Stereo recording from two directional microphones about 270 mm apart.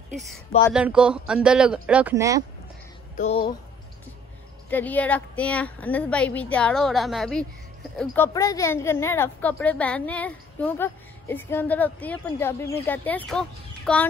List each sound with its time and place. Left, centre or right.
0.7 s a woman's voice: centre
3.2 s music: left
4.6 s a woman's voice: centre